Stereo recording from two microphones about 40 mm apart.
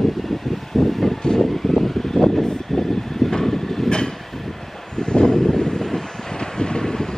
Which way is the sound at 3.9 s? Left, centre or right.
Centre.